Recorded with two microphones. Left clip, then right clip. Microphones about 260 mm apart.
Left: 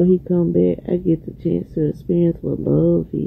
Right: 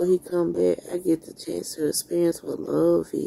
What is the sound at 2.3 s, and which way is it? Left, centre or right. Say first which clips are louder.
Speech: left 6 dB; centre.